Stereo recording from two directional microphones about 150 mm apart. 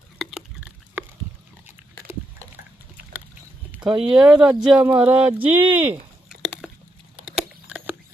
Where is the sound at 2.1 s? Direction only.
15° right (ahead or behind).